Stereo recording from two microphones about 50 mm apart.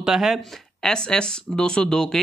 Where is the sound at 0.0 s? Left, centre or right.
Centre.